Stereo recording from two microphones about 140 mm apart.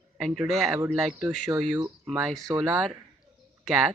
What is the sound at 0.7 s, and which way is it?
Speech, 15° right (ahead or behind).